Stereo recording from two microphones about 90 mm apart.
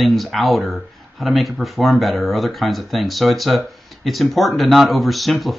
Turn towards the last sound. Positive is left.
turn(degrees=0)  # may be behind; listen again after turning